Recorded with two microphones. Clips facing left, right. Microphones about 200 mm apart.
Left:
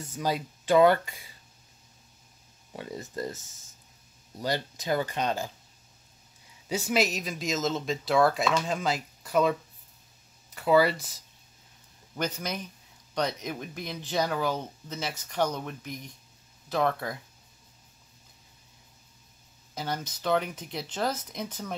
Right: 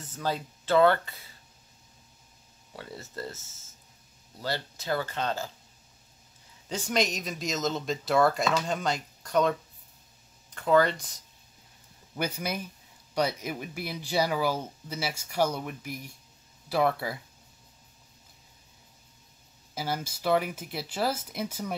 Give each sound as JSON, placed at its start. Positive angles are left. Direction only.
{"t": 0.0, "sound": "speech", "side_deg": 10}
{"t": 2.7, "sound": "speech", "side_deg": 15}
{"t": 6.7, "sound": "speech", "side_deg": 5}
{"t": 12.2, "sound": "speech", "side_deg": -10}
{"t": 19.7, "sound": "speech", "side_deg": -5}